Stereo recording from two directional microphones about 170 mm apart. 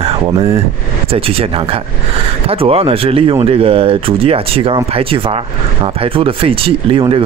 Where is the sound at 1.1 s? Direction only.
35° right (ahead or behind).